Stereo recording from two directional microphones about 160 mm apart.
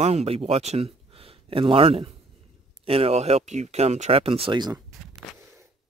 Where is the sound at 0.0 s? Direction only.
40° right (ahead or behind).